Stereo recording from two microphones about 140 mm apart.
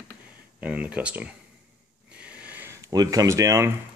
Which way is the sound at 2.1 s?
10° right (ahead or behind).